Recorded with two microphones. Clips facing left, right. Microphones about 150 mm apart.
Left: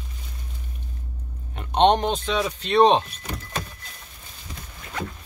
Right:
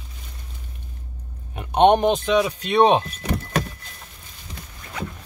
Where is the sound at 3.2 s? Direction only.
85° right.